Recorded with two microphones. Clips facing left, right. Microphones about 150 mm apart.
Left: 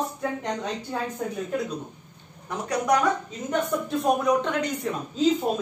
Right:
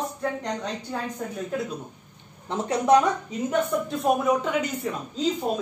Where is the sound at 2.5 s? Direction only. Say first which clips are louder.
Right 4 dB; 25° right (ahead or behind).